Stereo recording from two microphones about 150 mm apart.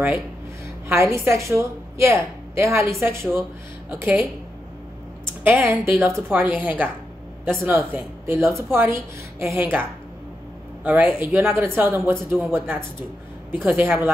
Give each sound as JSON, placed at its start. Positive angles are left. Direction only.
{"t": 0.8, "sound": "a woman's voice", "side_deg": -20}
{"t": 5.4, "sound": "speech", "side_deg": -15}